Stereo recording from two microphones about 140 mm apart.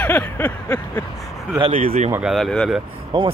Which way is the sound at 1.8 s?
50° right (ahead or behind).